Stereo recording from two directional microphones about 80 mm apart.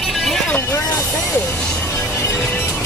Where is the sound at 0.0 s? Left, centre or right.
Centre.